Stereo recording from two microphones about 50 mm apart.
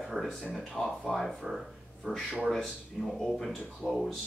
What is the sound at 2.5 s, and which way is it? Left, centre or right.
Speech, centre.